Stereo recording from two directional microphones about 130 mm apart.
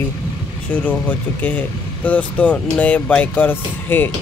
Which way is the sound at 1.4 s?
15° left (ahead or behind).